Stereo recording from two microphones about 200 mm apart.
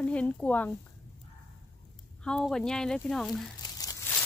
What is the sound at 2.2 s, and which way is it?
Speech, 5° left (ahead or behind).